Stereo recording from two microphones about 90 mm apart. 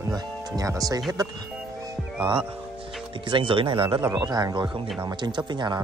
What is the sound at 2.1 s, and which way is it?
Music, 65° right (ahead or behind).